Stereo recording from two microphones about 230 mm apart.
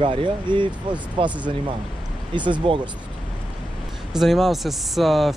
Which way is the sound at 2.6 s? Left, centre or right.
Right.